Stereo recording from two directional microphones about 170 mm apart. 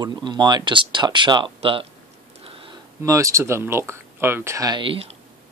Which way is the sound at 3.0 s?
20° right (ahead or behind).